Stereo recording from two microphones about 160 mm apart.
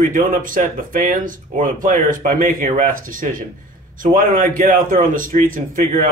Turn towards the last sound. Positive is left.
turn(degrees=-55)  # may be behind; listen again after turning